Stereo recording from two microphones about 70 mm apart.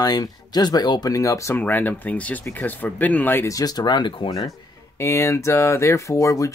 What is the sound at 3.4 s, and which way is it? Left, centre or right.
Speech, left.